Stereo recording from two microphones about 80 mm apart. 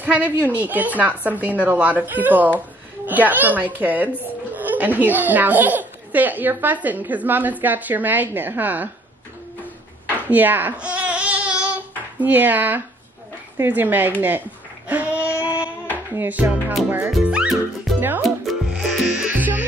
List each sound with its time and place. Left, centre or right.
0.0 s speech: centre
10.0 s a sound: right
12.2 s speech: right
14.9 s music: centre
17.9 s music: centre
18.7 s music: centre